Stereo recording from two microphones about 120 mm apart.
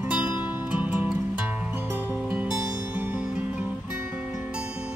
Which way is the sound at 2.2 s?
5° right (ahead or behind).